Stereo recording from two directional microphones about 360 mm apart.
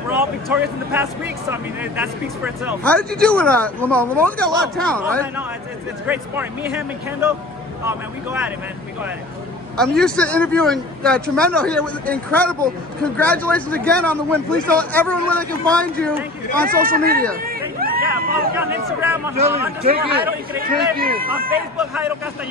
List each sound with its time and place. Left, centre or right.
0.1 s speech: centre
9.8 s speech: centre
16.5 s a man's voice: right
17.5 s a sound: right
18.5 s speech: centre
19.3 s a man's voice: right
21.7 s speech: centre